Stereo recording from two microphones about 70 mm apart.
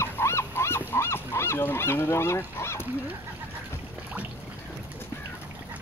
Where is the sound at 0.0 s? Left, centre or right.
Left.